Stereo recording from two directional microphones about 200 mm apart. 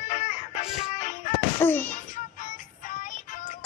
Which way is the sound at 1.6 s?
10° left (ahead or behind).